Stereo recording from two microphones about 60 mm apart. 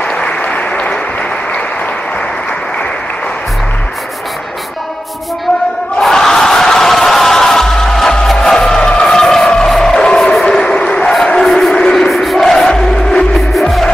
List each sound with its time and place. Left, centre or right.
0.0 s applause: left
5.9 s music: centre
10.4 s a sound: centre
11.3 s crowd: centre